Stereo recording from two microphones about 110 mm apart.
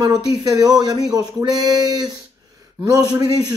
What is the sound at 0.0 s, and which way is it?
Speech, 35° right (ahead or behind).